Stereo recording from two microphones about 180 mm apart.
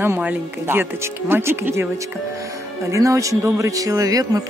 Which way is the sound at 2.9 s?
15° right (ahead or behind).